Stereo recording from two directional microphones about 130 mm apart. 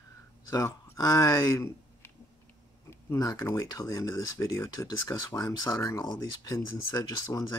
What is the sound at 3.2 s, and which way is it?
Speech, 30° left (ahead or behind).